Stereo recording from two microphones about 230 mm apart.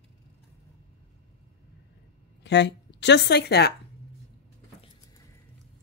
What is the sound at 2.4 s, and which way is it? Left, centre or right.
Speech, left.